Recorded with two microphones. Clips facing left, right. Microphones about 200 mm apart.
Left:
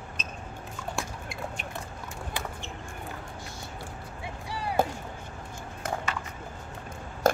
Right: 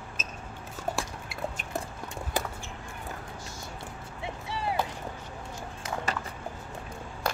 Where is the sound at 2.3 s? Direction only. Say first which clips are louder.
Right 5 dB; 40° right (ahead or behind).